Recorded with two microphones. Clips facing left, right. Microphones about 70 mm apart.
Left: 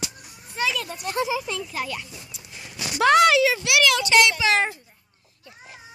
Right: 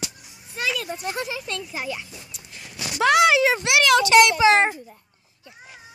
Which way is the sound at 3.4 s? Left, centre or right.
Right.